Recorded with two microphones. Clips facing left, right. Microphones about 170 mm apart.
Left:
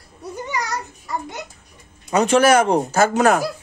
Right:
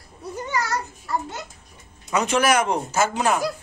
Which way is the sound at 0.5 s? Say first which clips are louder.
Right 1 dB; 15° left (ahead or behind).